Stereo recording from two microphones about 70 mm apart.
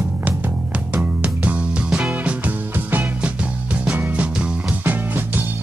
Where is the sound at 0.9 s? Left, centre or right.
Right.